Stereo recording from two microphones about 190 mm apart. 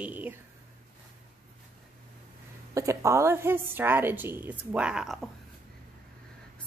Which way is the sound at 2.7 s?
15° right (ahead or behind).